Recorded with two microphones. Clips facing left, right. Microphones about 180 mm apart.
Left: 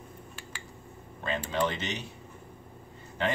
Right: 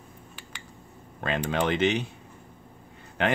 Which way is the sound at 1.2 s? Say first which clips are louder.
Right 3 dB; 70° right (ahead or behind).